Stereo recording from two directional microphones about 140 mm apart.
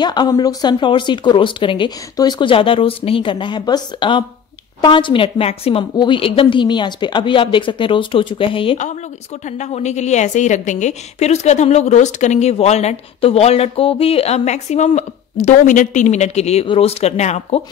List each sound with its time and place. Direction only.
0.0 s speech: 30° left (ahead or behind)
9.6 s a woman's voice: 55° left (ahead or behind)